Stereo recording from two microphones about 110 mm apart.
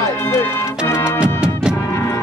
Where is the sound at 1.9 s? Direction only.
25° left (ahead or behind).